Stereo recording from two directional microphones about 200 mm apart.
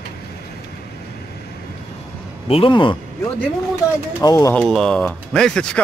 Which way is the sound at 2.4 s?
25° left (ahead or behind).